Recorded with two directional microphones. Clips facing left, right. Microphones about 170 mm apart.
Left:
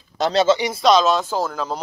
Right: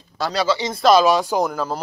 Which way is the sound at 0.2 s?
25° left (ahead or behind).